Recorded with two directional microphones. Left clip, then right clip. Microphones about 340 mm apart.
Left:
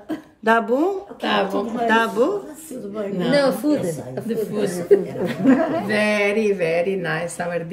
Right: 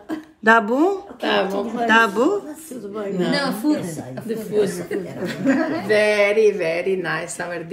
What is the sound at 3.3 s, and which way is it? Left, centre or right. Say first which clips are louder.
Speech: left 7 dB; centre.